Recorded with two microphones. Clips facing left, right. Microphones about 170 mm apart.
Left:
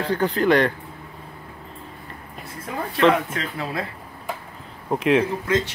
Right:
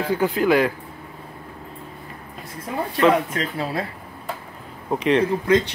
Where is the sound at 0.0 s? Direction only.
10° right (ahead or behind).